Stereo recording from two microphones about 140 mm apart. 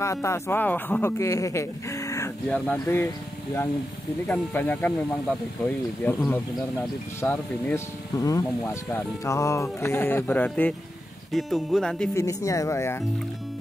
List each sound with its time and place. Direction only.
0.0 s speech: 20° left (ahead or behind)
2.5 s speech: 10° left (ahead or behind)
4.3 s speech: 10° left (ahead or behind)
6.0 s speech: 10° left (ahead or behind)
12.1 s speech: 20° left (ahead or behind)